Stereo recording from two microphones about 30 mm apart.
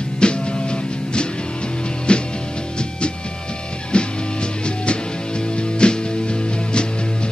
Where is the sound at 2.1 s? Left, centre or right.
Left.